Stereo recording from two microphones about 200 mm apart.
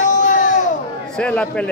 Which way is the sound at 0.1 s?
40° left (ahead or behind).